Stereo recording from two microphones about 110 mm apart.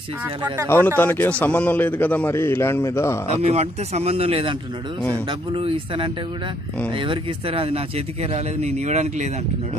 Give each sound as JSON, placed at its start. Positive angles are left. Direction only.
{"t": 0.7, "sound": "a man's voice", "side_deg": 20}
{"t": 3.3, "sound": "speech", "side_deg": -85}